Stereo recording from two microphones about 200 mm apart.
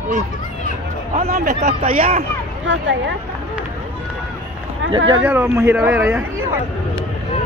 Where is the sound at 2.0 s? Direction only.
45° right (ahead or behind).